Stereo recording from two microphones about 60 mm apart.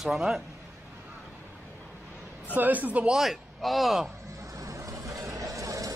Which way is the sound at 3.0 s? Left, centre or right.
Centre.